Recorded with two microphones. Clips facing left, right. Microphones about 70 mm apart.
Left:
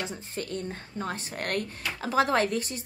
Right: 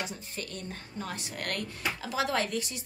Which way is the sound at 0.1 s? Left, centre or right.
Left.